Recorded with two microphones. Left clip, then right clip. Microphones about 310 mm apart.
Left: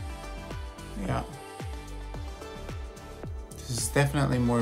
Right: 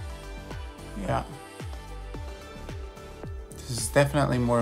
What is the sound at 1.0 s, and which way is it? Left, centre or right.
Music, centre.